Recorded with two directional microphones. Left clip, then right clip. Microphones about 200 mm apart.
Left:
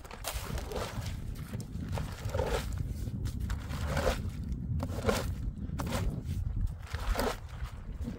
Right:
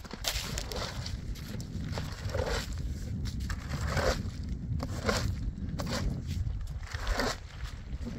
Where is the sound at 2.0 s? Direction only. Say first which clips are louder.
Even; 15° left (ahead or behind).